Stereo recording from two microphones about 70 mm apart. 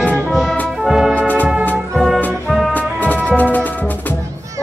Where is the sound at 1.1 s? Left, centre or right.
Left.